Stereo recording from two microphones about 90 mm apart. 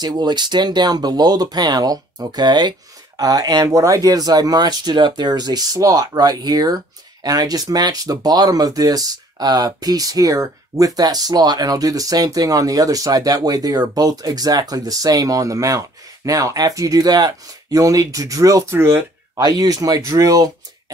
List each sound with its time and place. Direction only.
0.0 s speech: 50° right (ahead or behind)
3.2 s speech: 45° right (ahead or behind)